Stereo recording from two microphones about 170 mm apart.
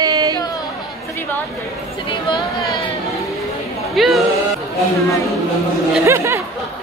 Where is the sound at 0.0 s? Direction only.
25° right (ahead or behind).